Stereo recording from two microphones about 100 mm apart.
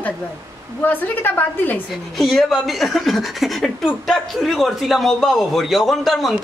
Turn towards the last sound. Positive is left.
turn(degrees=0)  # may be behind; listen again after turning